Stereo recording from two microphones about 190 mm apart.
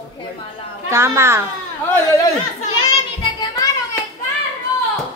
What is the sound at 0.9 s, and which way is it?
Speech, 15° right (ahead or behind).